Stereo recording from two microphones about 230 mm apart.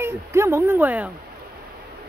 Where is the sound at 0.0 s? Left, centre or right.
Centre.